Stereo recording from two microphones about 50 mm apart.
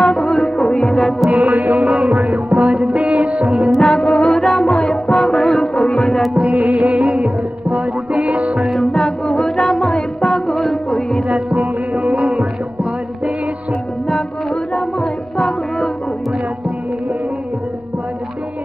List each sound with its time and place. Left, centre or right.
0.0 s music: centre
1.3 s music: right
1.8 s music: centre
3.5 s music: centre
3.9 s music: centre
6.5 s music: right
9.0 s music: centre
11.5 s music: right
12.2 s music: centre
14.0 s music: centre